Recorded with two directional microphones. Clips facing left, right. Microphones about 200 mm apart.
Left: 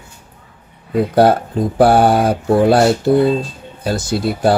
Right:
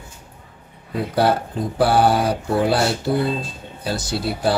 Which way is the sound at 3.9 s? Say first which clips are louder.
Left 6 dB; 50° left (ahead or behind).